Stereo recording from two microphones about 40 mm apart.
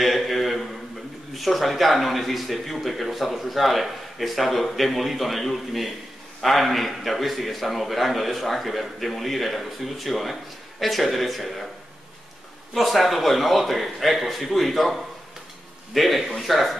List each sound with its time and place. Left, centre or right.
0.0 s a sound: centre
1.3 s speech: centre
12.7 s speech: centre